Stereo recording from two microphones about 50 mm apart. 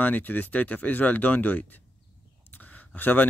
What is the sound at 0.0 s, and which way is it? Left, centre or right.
Speech, left.